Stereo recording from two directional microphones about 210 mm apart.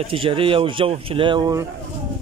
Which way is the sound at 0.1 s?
25° right (ahead or behind).